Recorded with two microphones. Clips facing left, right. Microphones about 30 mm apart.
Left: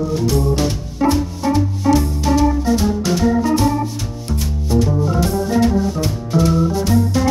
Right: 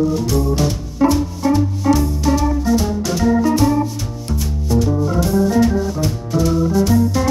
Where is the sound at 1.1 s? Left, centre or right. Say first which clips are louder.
Right 1 dB; centre.